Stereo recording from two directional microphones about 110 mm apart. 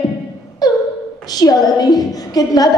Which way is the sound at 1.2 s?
35° left (ahead or behind).